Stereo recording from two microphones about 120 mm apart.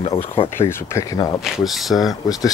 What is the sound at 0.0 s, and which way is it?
Speech, 55° left (ahead or behind).